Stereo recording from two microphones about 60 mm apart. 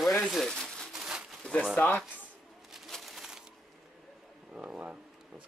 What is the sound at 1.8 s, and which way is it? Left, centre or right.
Speech, left.